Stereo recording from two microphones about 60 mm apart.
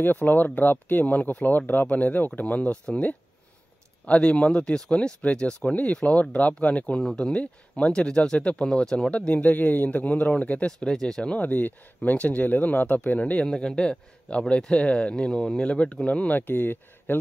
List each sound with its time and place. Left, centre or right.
0.0 s speech: left; by 11.3 s centre
11.3 s speech: left
13.5 s a man's voice: centre
16.3 s speech: left